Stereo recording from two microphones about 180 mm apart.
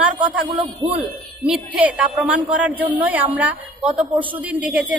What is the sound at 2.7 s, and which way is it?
Speech, 30° right (ahead or behind).